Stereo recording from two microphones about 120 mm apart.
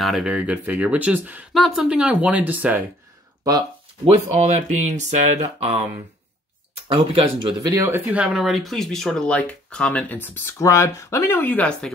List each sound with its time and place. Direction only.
0.0 s speech: 5° right (ahead or behind)
1.5 s speech: centre (ahead or behind)
4.0 s speech: 70° right (ahead or behind)
6.9 s speech: 50° right (ahead or behind)
7.7 s speech: 25° right (ahead or behind)
8.1 s speech: 5° right (ahead or behind); by 11.9 s 10° left (ahead or behind)